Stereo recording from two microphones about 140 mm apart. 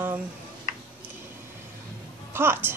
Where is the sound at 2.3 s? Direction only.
15° right (ahead or behind).